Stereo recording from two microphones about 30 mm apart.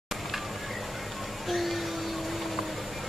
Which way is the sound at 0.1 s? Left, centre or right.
Centre.